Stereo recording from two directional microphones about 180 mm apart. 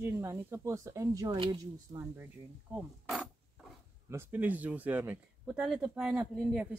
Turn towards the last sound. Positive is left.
turn(degrees=-5)  # may be behind; listen again after turning